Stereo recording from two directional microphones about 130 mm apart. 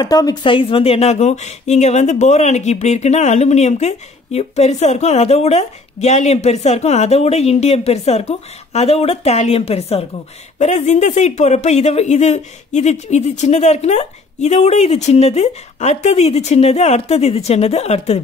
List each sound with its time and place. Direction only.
0.0 s speech: 30° left (ahead or behind); by 10.0 s 50° left (ahead or behind)
10.6 s speech: 65° left (ahead or behind)